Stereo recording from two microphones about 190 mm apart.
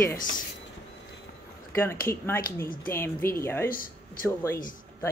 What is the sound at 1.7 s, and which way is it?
Speech, 15° left (ahead or behind).